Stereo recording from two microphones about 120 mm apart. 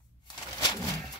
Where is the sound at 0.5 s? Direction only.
35° left (ahead or behind).